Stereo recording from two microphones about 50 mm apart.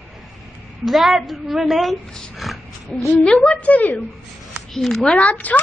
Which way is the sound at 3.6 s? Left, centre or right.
Left.